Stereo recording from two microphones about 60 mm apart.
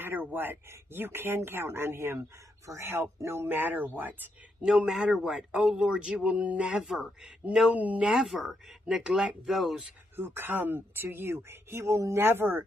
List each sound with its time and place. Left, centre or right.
0.0 s speech: right
4.6 s speech: centre
6.8 s speech: centre
7.7 s speech: right
8.1 s speech: centre
8.8 s speech: centre
10.1 s speech: right